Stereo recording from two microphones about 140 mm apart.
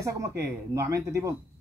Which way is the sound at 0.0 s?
25° right (ahead or behind).